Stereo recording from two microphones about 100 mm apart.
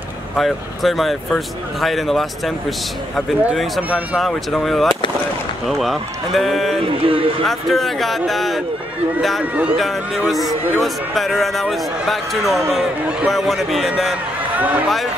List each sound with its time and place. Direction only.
0.4 s speech: centre (ahead or behind)
7.1 s a man's voice: 65° right (ahead or behind)
7.4 s speech: centre (ahead or behind)
9.4 s speech: 15° right (ahead or behind)
9.8 s speech: centre (ahead or behind)
14.6 s speech: 15° right (ahead or behind)